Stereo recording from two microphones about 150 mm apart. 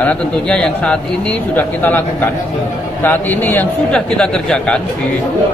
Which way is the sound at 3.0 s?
10° left (ahead or behind).